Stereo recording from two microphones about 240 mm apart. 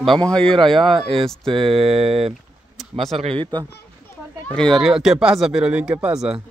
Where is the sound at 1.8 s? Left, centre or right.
Right.